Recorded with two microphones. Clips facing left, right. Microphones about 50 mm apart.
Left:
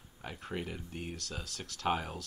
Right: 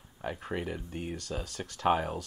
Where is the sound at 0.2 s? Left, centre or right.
Centre.